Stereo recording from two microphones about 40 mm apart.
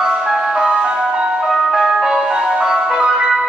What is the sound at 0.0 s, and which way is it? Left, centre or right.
Ice cream truck, centre.